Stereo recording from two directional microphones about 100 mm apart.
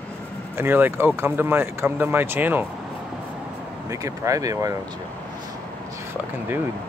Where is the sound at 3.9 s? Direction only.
35° right (ahead or behind).